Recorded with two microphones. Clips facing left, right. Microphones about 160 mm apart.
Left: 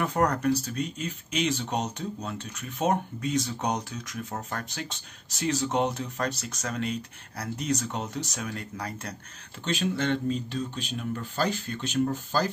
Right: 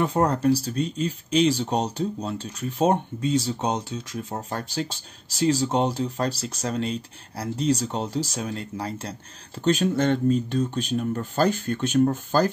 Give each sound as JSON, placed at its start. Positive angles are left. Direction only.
{"t": 0.0, "sound": "speech", "side_deg": -25}
{"t": 9.6, "sound": "speech", "side_deg": -45}